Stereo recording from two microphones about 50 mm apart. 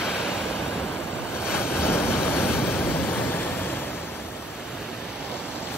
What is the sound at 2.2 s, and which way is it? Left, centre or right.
Waves, left.